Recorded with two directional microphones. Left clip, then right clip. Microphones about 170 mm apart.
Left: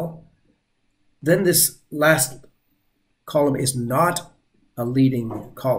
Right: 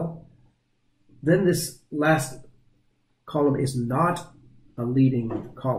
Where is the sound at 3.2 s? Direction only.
15° left (ahead or behind).